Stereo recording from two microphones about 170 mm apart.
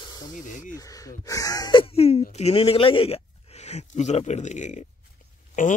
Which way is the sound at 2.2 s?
40° left (ahead or behind).